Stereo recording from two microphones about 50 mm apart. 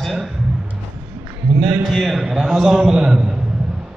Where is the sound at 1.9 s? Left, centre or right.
Centre.